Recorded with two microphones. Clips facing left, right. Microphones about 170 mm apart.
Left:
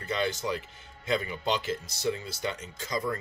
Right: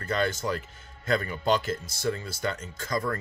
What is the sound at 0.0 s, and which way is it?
Speech, 45° right (ahead or behind).